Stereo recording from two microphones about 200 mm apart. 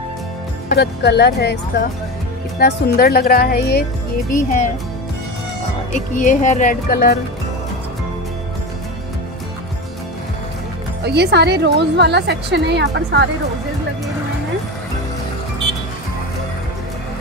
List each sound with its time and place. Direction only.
0.7 s speech: 55° left (ahead or behind)
2.6 s speech: 50° left (ahead or behind)
5.9 s speech: 40° left (ahead or behind)
11.1 s a woman's voice: 55° right (ahead or behind)